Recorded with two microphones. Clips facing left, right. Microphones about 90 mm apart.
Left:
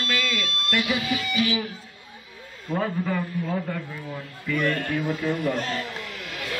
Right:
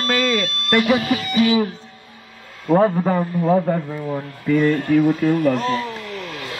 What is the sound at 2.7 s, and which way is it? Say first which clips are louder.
A man's voice: right 10 dB; 45° right (ahead or behind).